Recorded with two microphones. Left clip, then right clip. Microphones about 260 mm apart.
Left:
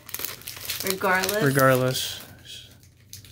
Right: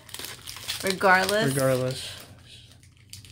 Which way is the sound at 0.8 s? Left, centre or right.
Right.